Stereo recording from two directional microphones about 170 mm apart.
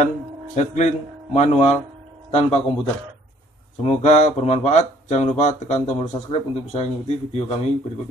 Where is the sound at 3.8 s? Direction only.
45° left (ahead or behind).